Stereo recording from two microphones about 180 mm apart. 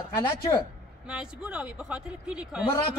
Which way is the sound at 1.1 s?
5° right (ahead or behind).